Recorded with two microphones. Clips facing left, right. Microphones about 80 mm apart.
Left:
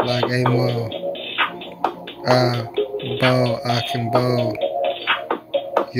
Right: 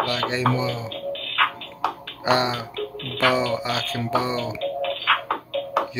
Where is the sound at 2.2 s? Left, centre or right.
Centre.